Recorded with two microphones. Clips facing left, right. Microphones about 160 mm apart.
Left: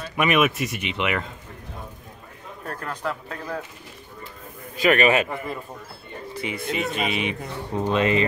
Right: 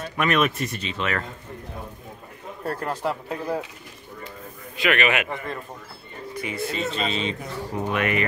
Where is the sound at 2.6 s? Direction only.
30° right (ahead or behind).